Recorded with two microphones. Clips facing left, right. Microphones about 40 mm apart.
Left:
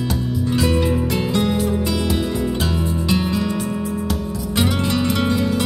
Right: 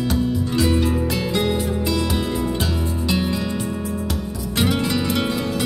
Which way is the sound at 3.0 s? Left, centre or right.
Centre.